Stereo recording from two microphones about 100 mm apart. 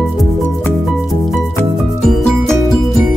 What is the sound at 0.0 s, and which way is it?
Music, centre (ahead or behind).